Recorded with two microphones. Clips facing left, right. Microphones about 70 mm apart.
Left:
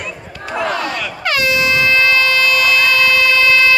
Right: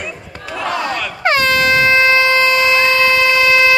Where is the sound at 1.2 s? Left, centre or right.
Right.